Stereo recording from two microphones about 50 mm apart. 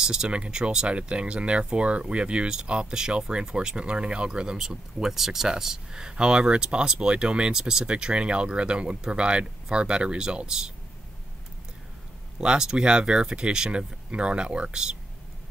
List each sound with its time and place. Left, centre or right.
0.0 s speech: centre
12.4 s speech: centre